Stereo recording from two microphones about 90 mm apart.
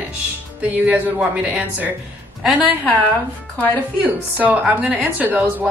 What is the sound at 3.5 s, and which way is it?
Speech, 15° left (ahead or behind).